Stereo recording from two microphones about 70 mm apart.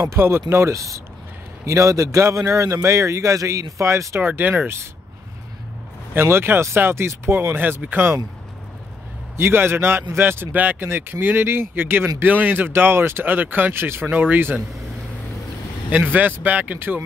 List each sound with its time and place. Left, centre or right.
0.2 s a man's voice: right
4.2 s speech: right
6.1 s speech: right
9.4 s speech: right
15.9 s speech: right